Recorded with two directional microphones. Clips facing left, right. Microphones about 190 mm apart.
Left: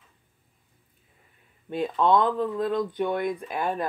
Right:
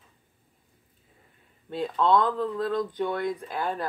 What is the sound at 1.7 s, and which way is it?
Speech, 15° left (ahead or behind).